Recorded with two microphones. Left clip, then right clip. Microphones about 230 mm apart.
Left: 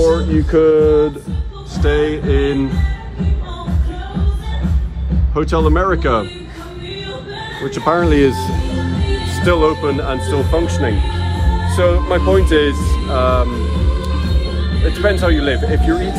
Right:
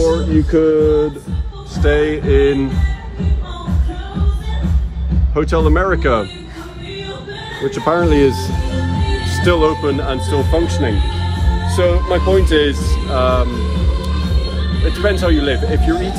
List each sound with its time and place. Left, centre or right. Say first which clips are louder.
0.0 s music: left 1 dB; centre
0.5 s speech: left 2 dB; left
1.8 s male singing: right 1 dB; left
5.3 s speech: even; centre
7.7 s speech: even; left
9.4 s speech: even; centre
14.9 s speech: left 1 dB; centre